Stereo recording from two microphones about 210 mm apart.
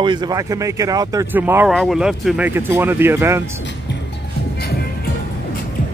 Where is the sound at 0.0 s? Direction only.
20° right (ahead or behind).